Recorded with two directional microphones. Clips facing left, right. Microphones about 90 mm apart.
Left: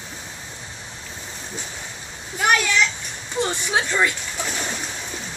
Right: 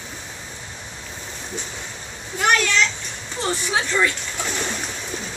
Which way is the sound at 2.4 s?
10° left (ahead or behind).